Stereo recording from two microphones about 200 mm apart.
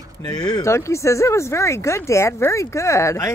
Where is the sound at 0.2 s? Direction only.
20° left (ahead or behind).